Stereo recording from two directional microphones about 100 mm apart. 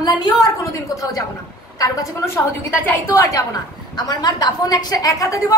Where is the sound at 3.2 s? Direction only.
30° left (ahead or behind).